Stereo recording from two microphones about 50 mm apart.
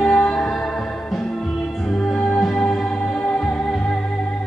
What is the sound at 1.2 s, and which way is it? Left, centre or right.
Music, centre.